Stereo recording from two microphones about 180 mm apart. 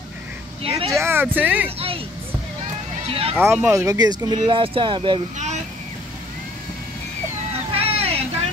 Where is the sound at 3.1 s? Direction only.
30° right (ahead or behind).